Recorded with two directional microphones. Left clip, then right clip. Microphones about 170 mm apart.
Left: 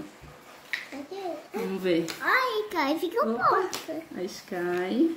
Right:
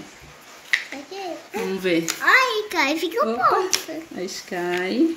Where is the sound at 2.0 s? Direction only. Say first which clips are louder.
Right 11 dB; centre (ahead or behind).